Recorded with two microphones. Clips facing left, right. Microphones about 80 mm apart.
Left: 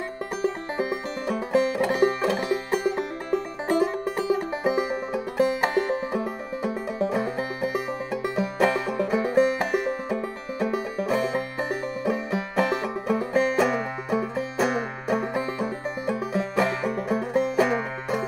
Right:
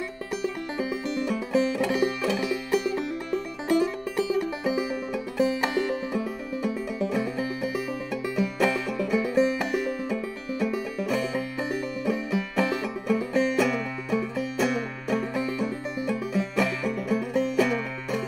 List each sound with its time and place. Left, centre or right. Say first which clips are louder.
0.4 s music: left 4 dB; left